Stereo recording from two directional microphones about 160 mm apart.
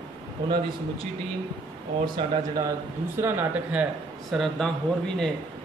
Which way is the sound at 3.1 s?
15° right (ahead or behind).